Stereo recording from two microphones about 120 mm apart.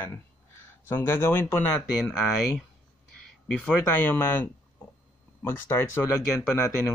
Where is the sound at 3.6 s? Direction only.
15° left (ahead or behind).